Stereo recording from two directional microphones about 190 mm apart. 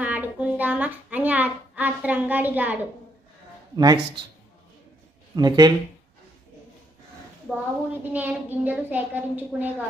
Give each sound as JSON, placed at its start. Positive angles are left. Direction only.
{"t": 0.0, "sound": "a sound", "side_deg": -5}
{"t": 3.7, "sound": "speech", "side_deg": -20}
{"t": 5.3, "sound": "speech", "side_deg": -20}
{"t": 8.0, "sound": "a woman's voice", "side_deg": -10}